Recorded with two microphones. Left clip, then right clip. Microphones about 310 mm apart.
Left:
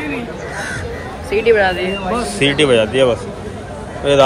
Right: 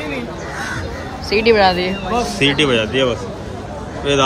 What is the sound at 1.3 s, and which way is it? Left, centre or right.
Speech, right.